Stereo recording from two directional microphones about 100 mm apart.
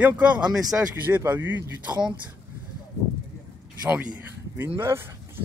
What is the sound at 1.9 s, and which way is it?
Speech, 50° right (ahead or behind).